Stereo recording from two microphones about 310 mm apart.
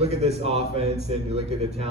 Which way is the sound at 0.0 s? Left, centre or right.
Centre.